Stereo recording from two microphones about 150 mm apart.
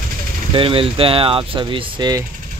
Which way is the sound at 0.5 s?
35° right (ahead or behind).